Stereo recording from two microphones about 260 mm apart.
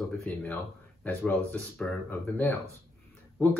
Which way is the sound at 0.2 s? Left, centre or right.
Centre.